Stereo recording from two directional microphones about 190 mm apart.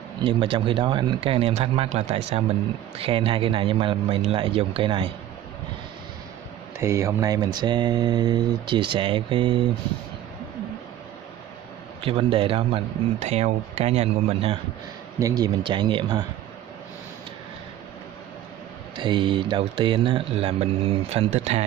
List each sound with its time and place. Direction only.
0.2 s speech: 25° right (ahead or behind)
6.8 s speech: 15° right (ahead or behind)
12.0 s speech: 30° right (ahead or behind)
15.1 s speech: 20° right (ahead or behind)
18.9 s speech: 25° right (ahead or behind)